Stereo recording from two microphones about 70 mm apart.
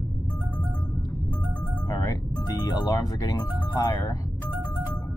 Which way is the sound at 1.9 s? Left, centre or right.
Left.